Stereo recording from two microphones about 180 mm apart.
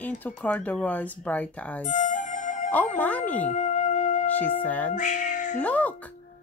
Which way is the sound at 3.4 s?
40° left (ahead or behind).